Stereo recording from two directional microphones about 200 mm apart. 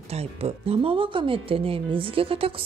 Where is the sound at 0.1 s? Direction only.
30° right (ahead or behind).